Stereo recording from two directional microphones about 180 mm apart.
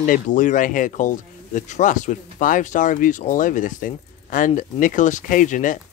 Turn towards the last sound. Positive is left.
turn(degrees=45)  # may be behind; listen again after turning